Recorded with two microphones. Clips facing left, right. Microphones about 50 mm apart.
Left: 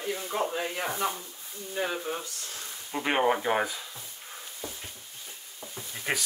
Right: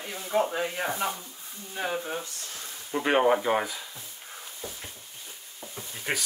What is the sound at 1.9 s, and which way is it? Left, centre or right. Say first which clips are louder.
Speech: right 1 dB; right.